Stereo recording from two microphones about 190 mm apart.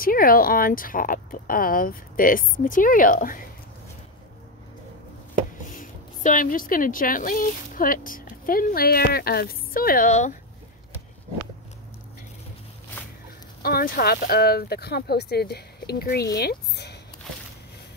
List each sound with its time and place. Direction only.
0.0 s speech: 50° left (ahead or behind)
5.7 s speech: 45° left (ahead or behind)
13.6 s speech: 50° left (ahead or behind)